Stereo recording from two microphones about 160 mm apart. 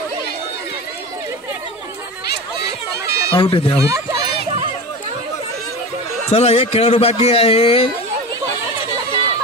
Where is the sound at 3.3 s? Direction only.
30° left (ahead or behind).